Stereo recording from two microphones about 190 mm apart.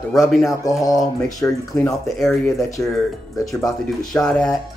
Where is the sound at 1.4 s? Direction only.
15° left (ahead or behind).